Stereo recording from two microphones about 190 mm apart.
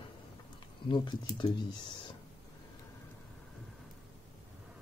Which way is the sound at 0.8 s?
25° left (ahead or behind).